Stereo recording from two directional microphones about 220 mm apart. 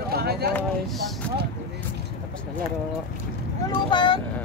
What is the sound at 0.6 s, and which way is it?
Speech, 5° left (ahead or behind).